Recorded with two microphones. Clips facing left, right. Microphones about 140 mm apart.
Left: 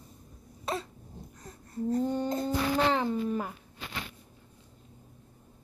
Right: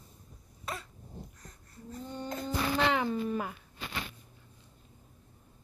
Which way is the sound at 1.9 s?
40° left (ahead or behind).